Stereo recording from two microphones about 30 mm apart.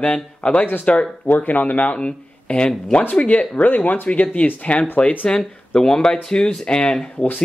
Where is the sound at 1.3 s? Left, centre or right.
Left.